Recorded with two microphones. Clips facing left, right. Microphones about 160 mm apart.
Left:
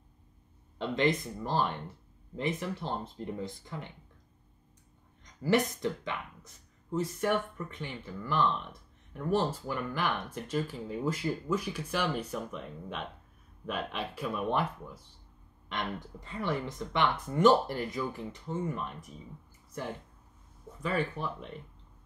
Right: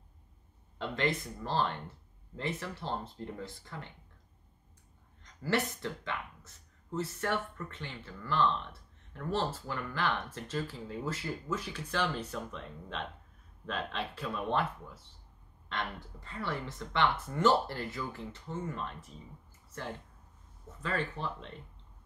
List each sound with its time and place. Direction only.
0.7 s speech: 20° left (ahead or behind)
5.2 s speech: 15° left (ahead or behind)
20.8 s speech: 10° left (ahead or behind)